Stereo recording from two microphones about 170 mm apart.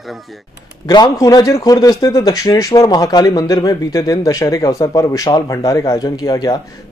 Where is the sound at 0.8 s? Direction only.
25° left (ahead or behind).